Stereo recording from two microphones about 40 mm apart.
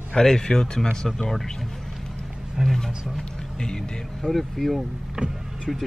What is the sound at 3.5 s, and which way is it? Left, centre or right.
Speech, centre.